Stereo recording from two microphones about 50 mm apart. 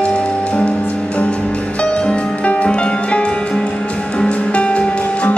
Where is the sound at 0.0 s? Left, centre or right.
Centre.